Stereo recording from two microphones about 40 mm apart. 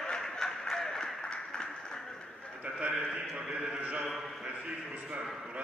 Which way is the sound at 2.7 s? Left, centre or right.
Right.